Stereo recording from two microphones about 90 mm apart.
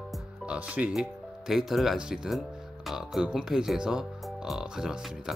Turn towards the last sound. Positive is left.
turn(degrees=-5)  # may be behind; listen again after turning